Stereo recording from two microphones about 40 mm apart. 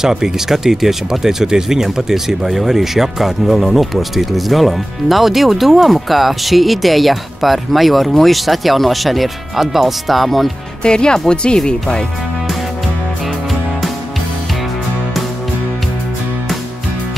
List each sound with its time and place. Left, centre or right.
0.0 s speech: centre
10.8 s speech: left